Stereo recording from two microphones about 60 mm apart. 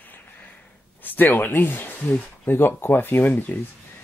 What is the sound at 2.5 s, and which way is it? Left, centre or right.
Speech, left.